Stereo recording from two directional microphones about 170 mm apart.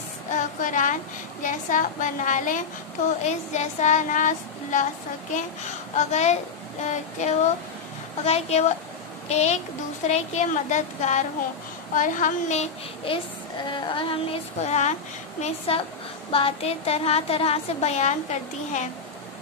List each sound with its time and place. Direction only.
0.3 s a sound: 50° left (ahead or behind)
1.4 s speech: 50° left (ahead or behind)
5.9 s a woman's voice: 40° left (ahead or behind)